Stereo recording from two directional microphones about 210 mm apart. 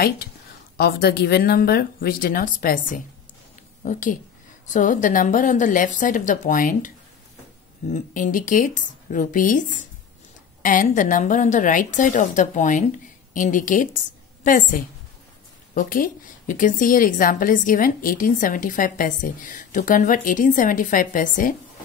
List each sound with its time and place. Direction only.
0.7 s a woman's voice: 50° left (ahead or behind)
7.9 s a woman's voice: 40° left (ahead or behind)